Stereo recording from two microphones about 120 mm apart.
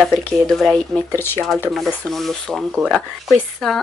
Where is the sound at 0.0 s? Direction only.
5° left (ahead or behind).